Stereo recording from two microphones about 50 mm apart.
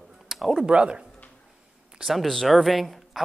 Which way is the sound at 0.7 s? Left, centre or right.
Right.